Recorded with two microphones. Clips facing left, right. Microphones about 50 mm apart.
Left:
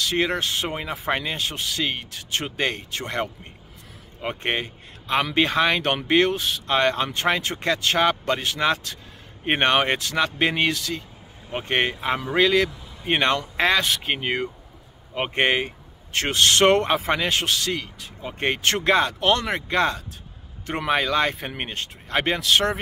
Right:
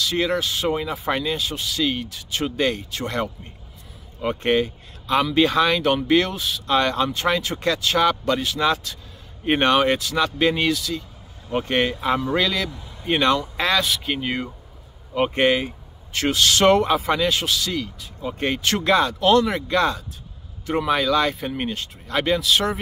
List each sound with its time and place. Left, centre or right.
0.0 s speech: left
13.8 s speech: left